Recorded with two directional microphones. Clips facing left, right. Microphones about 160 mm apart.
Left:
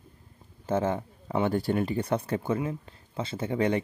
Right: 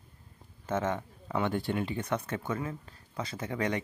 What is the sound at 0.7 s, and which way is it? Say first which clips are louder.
Speech: left 4 dB; 30° left (ahead or behind).